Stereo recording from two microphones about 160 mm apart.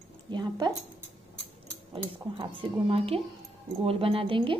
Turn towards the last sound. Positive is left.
turn(degrees=-35)  # may be behind; listen again after turning